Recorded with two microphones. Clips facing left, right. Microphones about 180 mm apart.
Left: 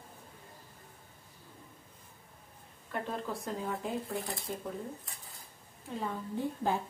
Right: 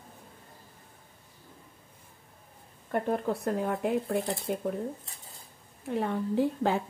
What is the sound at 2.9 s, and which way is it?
Speech, 55° right (ahead or behind).